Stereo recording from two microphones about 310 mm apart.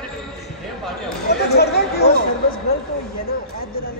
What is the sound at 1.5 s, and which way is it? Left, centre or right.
Speech, left.